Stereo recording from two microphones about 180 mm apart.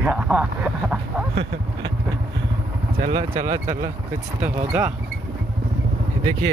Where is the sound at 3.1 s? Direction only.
35° right (ahead or behind).